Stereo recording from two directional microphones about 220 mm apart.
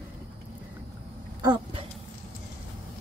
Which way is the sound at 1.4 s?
20° right (ahead or behind).